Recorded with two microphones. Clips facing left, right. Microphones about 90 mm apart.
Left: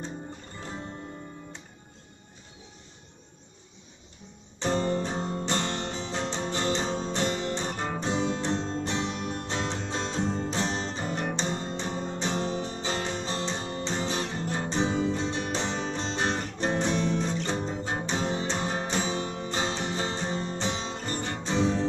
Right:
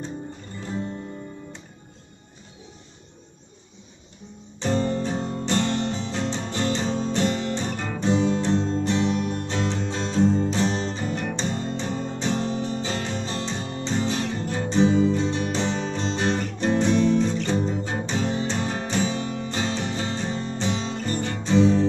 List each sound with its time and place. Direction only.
4.6 s music: 20° left (ahead or behind)